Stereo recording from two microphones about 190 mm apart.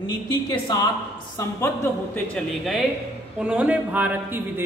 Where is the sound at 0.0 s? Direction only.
20° left (ahead or behind).